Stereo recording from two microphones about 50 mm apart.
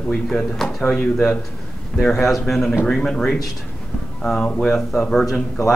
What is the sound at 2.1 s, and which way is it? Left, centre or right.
Speech, centre.